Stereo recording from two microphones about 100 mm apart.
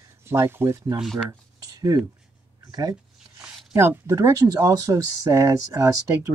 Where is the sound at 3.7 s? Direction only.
25° right (ahead or behind).